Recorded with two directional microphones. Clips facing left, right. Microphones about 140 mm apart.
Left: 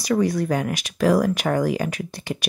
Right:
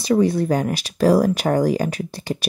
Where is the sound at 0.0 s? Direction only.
25° right (ahead or behind).